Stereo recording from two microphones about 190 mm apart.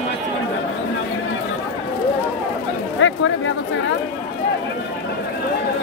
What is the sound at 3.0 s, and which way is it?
Speech, 90° left.